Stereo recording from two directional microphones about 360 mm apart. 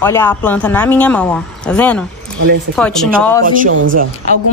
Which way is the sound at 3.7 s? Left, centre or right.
Right.